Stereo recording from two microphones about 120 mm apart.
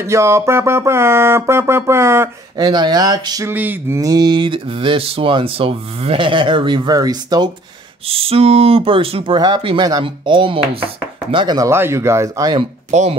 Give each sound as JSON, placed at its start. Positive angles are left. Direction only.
{"t": 0.0, "sound": "music", "side_deg": -25}
{"t": 2.5, "sound": "speech", "side_deg": -35}
{"t": 3.4, "sound": "a sound", "side_deg": -15}
{"t": 4.0, "sound": "speech", "side_deg": -35}
{"t": 8.1, "sound": "speech", "side_deg": -55}
{"t": 11.3, "sound": "music", "side_deg": -35}
{"t": 12.9, "sound": "speech", "side_deg": -65}